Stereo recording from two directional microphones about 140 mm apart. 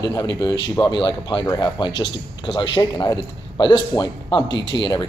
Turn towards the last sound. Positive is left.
turn(degrees=35)  # may be behind; listen again after turning